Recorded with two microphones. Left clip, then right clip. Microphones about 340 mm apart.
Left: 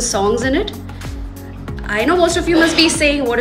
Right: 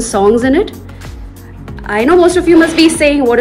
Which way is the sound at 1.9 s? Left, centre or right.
Centre.